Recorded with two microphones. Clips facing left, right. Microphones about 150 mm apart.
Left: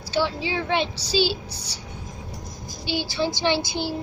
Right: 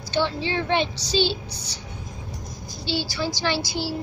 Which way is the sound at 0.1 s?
5° left (ahead or behind).